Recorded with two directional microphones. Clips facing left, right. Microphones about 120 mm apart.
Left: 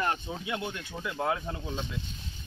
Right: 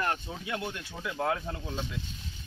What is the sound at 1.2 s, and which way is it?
Speech, 10° left (ahead or behind).